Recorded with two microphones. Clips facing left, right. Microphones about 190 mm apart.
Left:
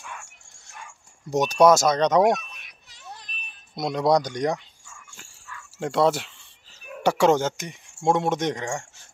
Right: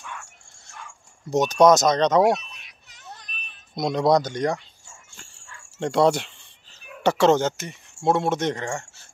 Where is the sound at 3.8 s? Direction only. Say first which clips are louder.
Right 1 dB; 5° left (ahead or behind).